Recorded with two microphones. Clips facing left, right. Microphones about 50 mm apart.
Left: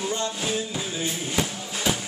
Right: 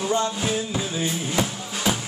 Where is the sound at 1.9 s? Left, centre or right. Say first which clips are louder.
Right 2 dB; centre.